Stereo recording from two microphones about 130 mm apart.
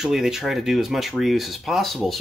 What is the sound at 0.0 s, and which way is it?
Speech, 5° right (ahead or behind).